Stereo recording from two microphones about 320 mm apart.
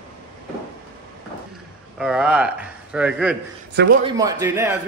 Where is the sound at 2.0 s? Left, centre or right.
Centre.